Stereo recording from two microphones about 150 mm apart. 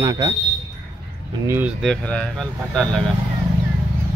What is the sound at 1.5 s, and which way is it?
Speech, 10° right (ahead or behind).